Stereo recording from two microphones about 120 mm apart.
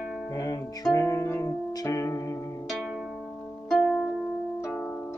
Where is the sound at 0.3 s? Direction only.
30° left (ahead or behind).